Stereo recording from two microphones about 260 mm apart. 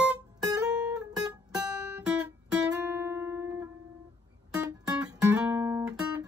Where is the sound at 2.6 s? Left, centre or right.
Centre.